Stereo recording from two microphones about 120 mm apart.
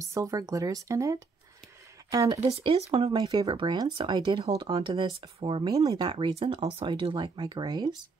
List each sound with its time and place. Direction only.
0.0 s speech: 25° right (ahead or behind)
2.4 s speech: 55° right (ahead or behind)
3.1 s speech: 40° right (ahead or behind)
5.4 s speech: 45° right (ahead or behind)
6.3 s speech: 55° right (ahead or behind); by 7.9 s 35° right (ahead or behind)